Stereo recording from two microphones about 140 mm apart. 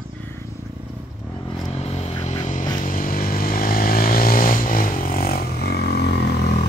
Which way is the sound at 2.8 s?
85° left.